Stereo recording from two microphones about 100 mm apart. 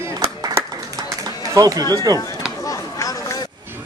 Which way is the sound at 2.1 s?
40° right (ahead or behind).